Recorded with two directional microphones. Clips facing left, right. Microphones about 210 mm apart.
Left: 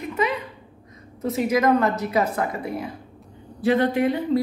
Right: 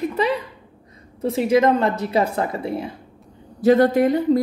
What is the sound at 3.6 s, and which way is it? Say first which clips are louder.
Speech: right 5 dB; 40° right (ahead or behind).